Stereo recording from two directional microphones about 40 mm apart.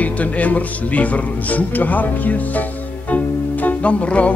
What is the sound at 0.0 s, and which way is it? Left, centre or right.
Music, left.